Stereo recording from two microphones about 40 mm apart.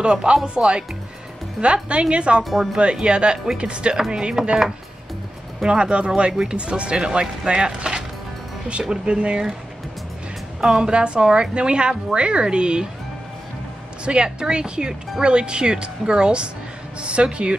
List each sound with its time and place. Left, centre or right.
0.0 s speech: right
2.5 s speech: centre
2.8 s speech: right
5.7 s speech: right
9.0 s speech: right
10.6 s speech: centre
14.0 s speech: right